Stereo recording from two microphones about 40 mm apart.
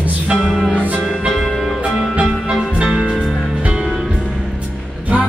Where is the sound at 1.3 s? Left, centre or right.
Centre.